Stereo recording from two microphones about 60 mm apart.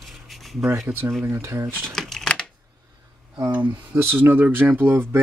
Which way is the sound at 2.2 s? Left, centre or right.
Centre.